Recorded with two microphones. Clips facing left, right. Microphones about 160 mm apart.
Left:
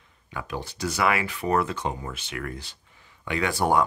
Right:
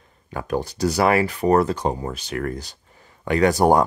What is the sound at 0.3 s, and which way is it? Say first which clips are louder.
Speech: right 8 dB; 40° right (ahead or behind).